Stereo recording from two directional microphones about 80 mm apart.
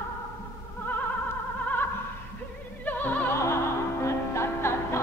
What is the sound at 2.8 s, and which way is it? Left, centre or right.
Opera, left.